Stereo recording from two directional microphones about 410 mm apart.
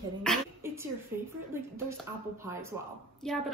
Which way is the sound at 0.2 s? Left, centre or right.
Centre.